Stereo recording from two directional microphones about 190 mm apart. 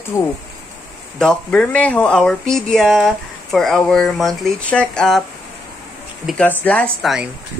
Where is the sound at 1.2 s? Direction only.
5° left (ahead or behind).